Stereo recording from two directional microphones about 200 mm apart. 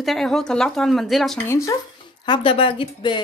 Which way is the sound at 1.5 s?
15° left (ahead or behind).